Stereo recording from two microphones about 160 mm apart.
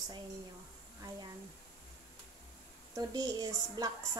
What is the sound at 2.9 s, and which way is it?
Speech, 25° right (ahead or behind).